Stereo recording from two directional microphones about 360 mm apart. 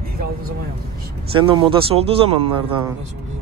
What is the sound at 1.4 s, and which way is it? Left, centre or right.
Speech, centre.